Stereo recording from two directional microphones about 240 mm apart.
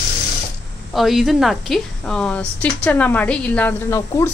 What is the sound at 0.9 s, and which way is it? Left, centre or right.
A woman's voice, centre.